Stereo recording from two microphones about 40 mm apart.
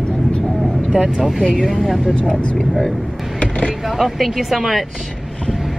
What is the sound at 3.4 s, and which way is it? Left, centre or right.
Vehicle, left.